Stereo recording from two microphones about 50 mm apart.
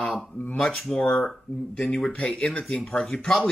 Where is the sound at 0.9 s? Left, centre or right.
Left.